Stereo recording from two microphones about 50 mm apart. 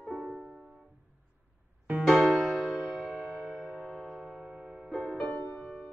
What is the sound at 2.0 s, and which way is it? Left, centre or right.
Music, centre.